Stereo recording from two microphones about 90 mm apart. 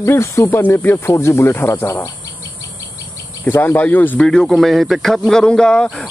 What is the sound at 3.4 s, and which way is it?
Speech, 25° left (ahead or behind).